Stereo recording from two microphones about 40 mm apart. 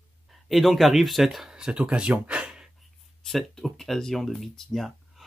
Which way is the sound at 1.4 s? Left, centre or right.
Right.